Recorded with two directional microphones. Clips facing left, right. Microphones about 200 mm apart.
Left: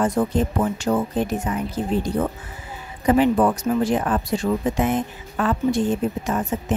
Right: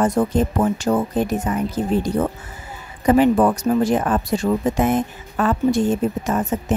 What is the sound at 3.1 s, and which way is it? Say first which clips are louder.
A woman's voice: right 2 dB; 45° right (ahead or behind).